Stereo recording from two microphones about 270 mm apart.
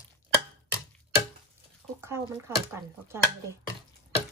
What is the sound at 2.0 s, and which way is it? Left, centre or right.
Chopping, centre.